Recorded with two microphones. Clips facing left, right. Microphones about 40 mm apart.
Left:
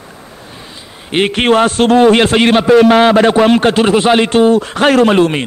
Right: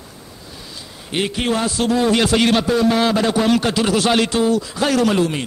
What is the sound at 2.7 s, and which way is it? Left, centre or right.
A man's voice, left.